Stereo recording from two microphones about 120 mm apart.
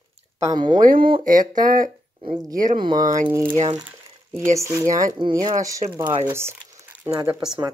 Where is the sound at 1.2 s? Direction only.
90° right.